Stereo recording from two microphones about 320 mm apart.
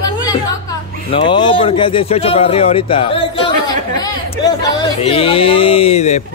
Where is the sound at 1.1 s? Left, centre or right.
Centre.